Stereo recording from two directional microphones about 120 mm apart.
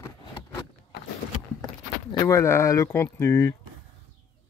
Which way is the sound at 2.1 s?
30° left (ahead or behind).